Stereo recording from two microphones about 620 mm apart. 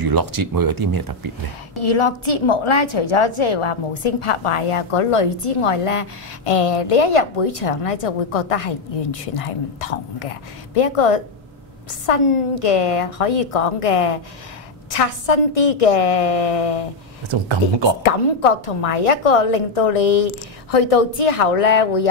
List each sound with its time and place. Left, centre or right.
0.0 s speech: right
1.8 s a woman's voice: left
17.3 s speech: right
18.0 s a woman's voice: left